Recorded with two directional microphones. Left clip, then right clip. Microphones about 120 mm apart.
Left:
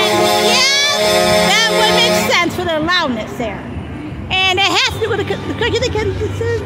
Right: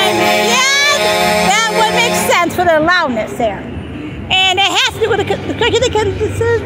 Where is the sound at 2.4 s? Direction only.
10° left (ahead or behind).